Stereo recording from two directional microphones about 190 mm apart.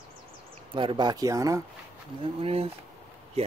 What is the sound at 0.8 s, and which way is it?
Speech, 25° right (ahead or behind).